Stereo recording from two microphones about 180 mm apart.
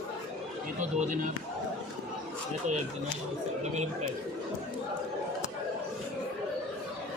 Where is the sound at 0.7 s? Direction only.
45° right (ahead or behind).